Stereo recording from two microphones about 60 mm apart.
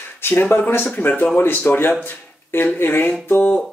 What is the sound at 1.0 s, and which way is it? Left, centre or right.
Speech, left.